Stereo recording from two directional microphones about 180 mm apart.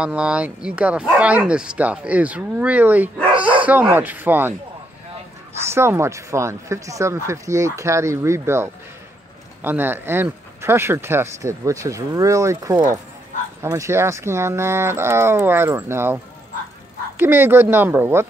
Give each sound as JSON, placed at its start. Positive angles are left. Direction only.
{"t": 0.0, "sound": "speech", "side_deg": -5}
{"t": 5.7, "sound": "speech", "side_deg": -15}
{"t": 17.2, "sound": "speech", "side_deg": -10}